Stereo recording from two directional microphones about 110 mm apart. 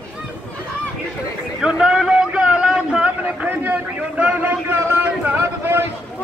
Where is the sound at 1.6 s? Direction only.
5° right (ahead or behind).